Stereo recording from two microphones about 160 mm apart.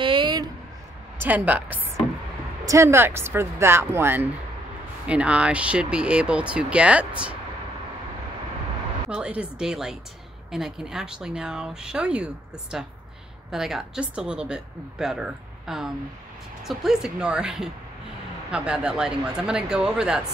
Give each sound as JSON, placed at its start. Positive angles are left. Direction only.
{"t": 0.0, "sound": "a sound", "side_deg": -30}
{"t": 1.1, "sound": "speech", "side_deg": -10}
{"t": 9.1, "sound": "a woman's voice", "side_deg": -5}